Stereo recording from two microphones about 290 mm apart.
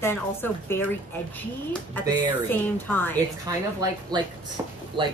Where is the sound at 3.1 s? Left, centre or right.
Centre.